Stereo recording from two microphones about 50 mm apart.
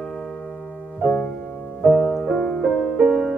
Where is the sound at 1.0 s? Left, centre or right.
Left.